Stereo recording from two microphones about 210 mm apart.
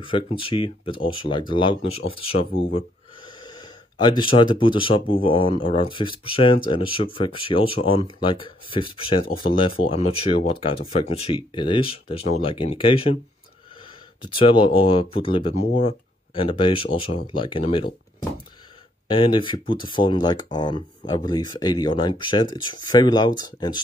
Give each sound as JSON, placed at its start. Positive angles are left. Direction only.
{"t": 0.0, "sound": "speech", "side_deg": 25}
{"t": 14.2, "sound": "speech", "side_deg": 25}
{"t": 19.0, "sound": "speech", "side_deg": 25}